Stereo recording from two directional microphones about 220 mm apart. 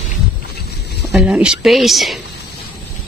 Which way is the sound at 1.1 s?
5° right (ahead or behind).